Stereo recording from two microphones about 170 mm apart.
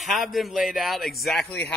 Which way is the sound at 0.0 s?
Centre (ahead or behind).